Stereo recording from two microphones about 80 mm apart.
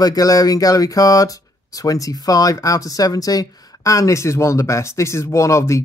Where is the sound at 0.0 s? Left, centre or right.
Left.